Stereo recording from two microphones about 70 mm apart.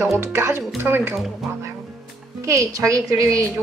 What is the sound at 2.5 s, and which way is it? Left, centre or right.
Speech, right.